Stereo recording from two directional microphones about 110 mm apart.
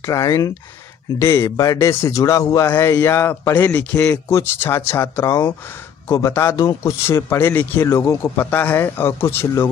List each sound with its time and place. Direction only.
0.0 s speech: 30° left (ahead or behind)